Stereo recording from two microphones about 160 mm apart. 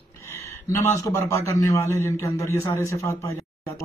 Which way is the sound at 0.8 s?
15° left (ahead or behind).